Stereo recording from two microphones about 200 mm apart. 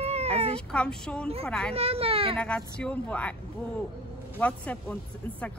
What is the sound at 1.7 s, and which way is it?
Speech, 30° right (ahead or behind).